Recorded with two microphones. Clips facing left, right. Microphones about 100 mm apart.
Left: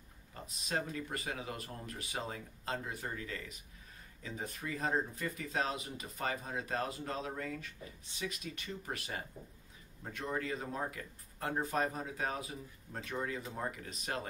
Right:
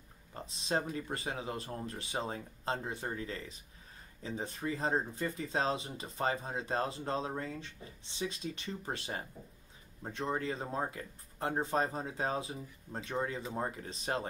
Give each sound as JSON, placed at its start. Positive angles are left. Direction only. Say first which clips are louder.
{"t": 0.3, "sound": "speech", "louder": "right 4 dB", "side_deg": -30}